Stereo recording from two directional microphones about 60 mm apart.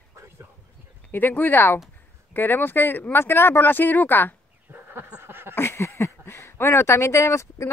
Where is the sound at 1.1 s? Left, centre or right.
Left.